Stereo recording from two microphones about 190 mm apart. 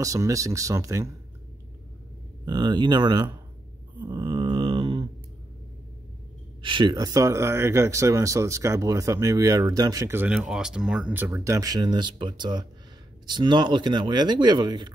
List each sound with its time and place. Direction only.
0.0 s speech: 15° right (ahead or behind)
2.4 s speech: 20° right (ahead or behind)
4.0 s mantra: 25° right (ahead or behind)
6.6 s speech: 25° right (ahead or behind)